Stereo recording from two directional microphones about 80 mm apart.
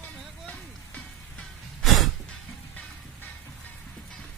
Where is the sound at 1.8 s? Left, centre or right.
Centre.